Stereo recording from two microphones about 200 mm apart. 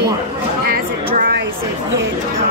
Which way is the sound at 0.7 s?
50° right (ahead or behind).